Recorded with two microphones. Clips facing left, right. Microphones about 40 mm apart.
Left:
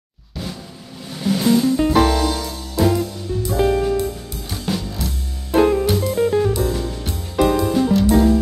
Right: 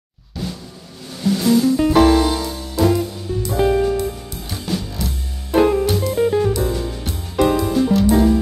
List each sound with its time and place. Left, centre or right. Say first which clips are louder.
1.2 s music: right 1 dB; centre
2.1 s music: right 3 dB; centre
2.7 s music: right 1 dB; centre